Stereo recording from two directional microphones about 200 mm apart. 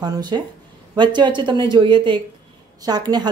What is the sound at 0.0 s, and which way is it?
A woman's voice, 20° right (ahead or behind).